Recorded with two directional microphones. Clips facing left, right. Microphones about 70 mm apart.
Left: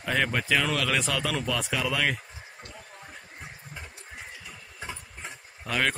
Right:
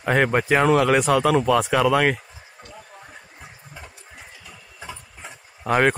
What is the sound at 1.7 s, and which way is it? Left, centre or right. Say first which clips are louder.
Speech: right 9 dB; right.